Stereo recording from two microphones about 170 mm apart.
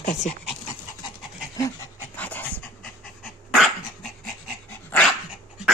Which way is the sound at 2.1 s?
10° left (ahead or behind).